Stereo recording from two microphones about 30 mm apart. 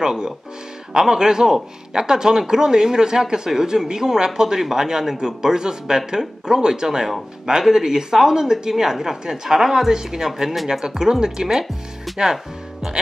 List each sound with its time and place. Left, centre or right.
0.0 s a woman's voice: right